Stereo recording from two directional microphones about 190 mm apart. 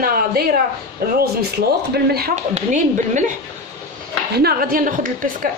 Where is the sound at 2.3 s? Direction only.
40° right (ahead or behind).